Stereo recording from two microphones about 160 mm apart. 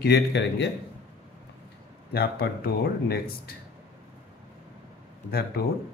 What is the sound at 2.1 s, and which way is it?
Speech, 85° left.